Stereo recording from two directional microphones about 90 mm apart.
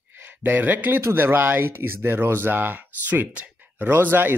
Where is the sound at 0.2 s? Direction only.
20° right (ahead or behind).